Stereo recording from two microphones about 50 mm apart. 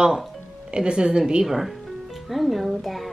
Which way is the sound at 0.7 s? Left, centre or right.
Centre.